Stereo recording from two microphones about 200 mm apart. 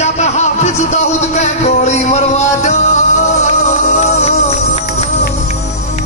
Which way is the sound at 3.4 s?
35° left (ahead or behind).